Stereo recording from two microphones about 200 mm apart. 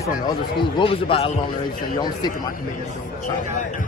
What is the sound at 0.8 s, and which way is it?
Speech, 25° left (ahead or behind).